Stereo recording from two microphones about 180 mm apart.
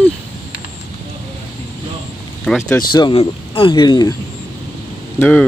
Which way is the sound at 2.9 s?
25° left (ahead or behind).